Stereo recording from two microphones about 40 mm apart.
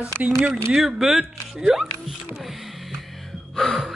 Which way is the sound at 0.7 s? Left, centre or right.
Centre.